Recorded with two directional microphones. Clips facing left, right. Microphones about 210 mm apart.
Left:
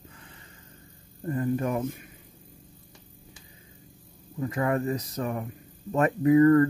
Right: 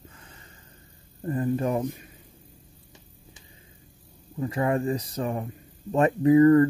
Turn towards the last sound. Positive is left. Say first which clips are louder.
# right 2 dB
turn(degrees=-25)  # may be behind; listen again after turning